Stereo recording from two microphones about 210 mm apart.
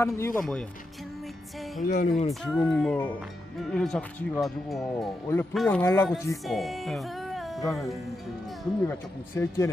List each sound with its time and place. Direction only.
0.0 s speech: 15° left (ahead or behind)
1.9 s speech: 35° left (ahead or behind)
2.4 s speech: 5° left (ahead or behind)
6.4 s music: centre (ahead or behind)
8.8 s speech: 10° left (ahead or behind)